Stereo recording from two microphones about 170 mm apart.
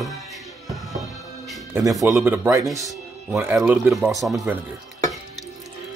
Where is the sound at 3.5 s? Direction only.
5° right (ahead or behind).